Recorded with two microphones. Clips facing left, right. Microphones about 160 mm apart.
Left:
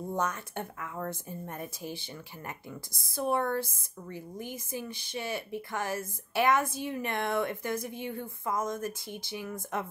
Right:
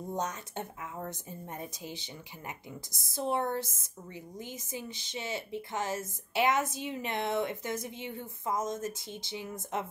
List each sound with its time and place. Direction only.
0.1 s a woman's voice: 20° right (ahead or behind)